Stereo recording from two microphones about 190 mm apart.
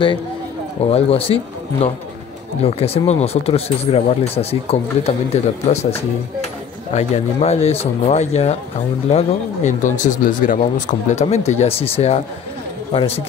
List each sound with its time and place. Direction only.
0.8 s speech: 30° left (ahead or behind)